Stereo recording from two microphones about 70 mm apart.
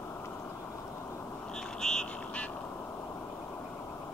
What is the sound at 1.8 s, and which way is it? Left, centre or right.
Vehicle, centre.